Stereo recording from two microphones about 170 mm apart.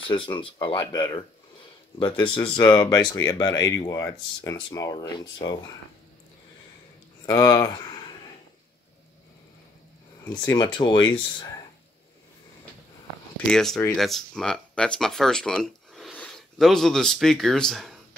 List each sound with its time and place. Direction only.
0.1 s speech: 30° left (ahead or behind)
7.2 s speech: 20° left (ahead or behind)
10.2 s speech: 20° left (ahead or behind)
13.5 s speech: 5° left (ahead or behind)